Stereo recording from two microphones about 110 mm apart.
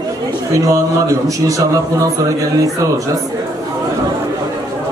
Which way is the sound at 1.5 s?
30° right (ahead or behind).